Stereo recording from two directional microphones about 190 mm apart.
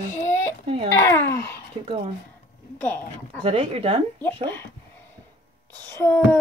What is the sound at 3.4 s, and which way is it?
Speech, 30° right (ahead or behind).